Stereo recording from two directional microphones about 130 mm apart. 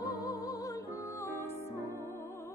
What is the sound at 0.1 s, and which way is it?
Music, 30° left (ahead or behind).